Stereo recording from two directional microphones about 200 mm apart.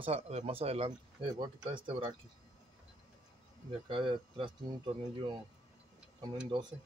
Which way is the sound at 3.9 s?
25° right (ahead or behind).